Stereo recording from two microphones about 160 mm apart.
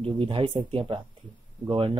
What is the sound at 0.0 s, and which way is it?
Speech, 35° right (ahead or behind).